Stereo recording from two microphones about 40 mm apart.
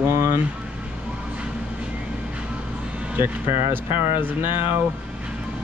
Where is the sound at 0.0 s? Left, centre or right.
Right.